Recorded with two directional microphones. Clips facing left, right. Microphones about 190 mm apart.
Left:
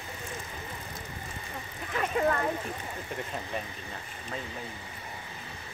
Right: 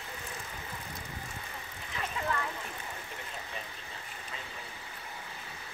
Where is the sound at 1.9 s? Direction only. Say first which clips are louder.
Left 8 dB; 55° left (ahead or behind).